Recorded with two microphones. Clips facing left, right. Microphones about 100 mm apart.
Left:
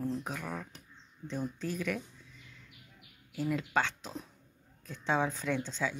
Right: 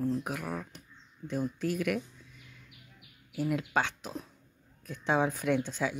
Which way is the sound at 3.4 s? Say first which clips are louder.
Right 1 dB; 15° right (ahead or behind).